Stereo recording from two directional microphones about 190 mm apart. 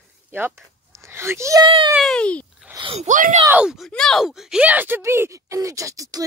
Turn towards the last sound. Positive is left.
turn(degrees=-15)  # may be behind; listen again after turning